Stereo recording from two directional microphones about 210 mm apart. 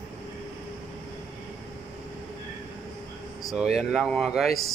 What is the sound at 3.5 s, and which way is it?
Speech, centre (ahead or behind).